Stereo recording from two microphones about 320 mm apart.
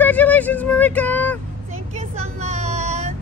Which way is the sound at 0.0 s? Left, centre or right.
Centre.